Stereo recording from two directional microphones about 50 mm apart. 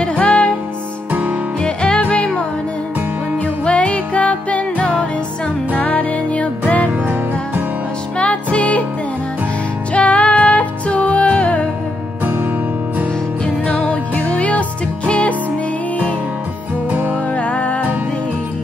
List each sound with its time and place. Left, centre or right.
0.0 s music: left
1.6 s music: centre
3.6 s music: left
6.9 s music: right
8.2 s music: left
9.9 s music: left
13.7 s music: left
17.4 s music: left